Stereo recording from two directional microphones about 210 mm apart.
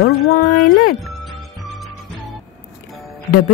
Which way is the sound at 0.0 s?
45° left (ahead or behind).